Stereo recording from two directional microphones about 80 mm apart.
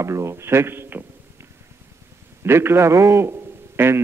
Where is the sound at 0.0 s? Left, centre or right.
Right.